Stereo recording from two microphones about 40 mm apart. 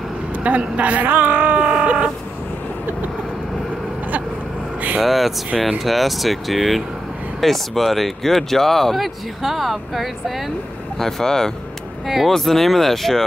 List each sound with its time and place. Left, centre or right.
0.4 s speech: right
1.0 s speech: right
1.7 s vehicle: right
5.0 s speech: centre
11.0 s speech: centre